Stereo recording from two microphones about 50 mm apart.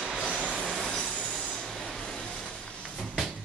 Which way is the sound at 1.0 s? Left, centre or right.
Centre.